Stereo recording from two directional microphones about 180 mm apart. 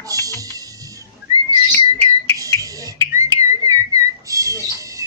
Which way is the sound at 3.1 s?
20° right (ahead or behind).